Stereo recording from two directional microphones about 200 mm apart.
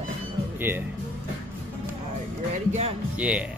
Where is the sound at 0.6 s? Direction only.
10° right (ahead or behind).